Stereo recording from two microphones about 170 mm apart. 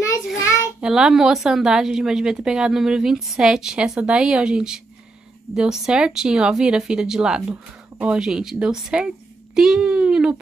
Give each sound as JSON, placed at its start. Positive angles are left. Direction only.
{"t": 0.4, "sound": "child singing", "side_deg": 15}
{"t": 0.7, "sound": "speech", "side_deg": -5}